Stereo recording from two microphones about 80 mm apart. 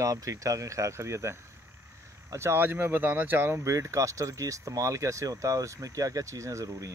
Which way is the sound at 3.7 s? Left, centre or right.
Right.